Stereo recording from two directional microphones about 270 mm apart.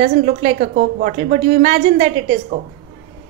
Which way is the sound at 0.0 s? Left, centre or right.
Right.